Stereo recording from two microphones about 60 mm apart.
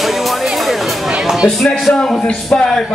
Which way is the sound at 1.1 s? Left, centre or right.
Centre.